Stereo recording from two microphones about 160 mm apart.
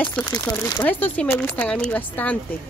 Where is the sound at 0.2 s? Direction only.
25° left (ahead or behind).